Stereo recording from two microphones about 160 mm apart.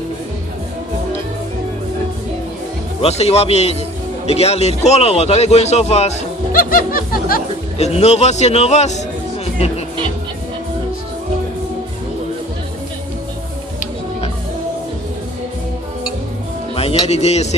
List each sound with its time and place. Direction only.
3.0 s a man's voice: 40° left (ahead or behind)
6.5 s music: 60° left (ahead or behind)
7.7 s a man's voice: 40° left (ahead or behind)
16.7 s speech: 40° left (ahead or behind)